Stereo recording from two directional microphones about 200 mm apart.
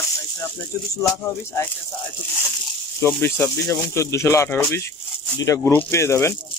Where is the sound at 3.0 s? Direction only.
15° left (ahead or behind).